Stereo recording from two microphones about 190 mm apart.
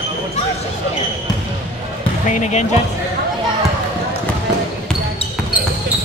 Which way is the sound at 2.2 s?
40° left (ahead or behind).